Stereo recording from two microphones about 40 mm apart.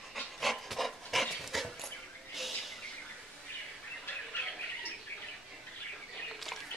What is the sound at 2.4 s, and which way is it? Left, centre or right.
Bird, centre.